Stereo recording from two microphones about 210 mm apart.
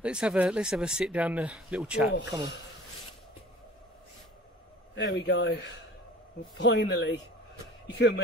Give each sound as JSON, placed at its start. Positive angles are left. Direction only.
{"t": 0.0, "sound": "speech", "side_deg": -5}
{"t": 4.9, "sound": "a man's voice", "side_deg": 55}